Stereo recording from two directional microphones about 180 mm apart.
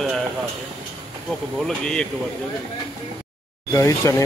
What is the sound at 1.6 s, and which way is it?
Speech, 5° left (ahead or behind).